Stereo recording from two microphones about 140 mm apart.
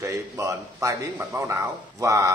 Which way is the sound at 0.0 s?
20° right (ahead or behind).